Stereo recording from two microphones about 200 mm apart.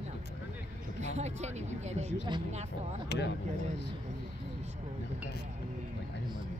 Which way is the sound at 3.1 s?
60° left (ahead or behind).